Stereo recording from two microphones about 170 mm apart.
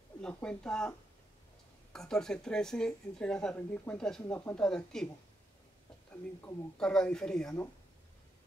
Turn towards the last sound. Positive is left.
turn(degrees=5)  # may be behind; listen again after turning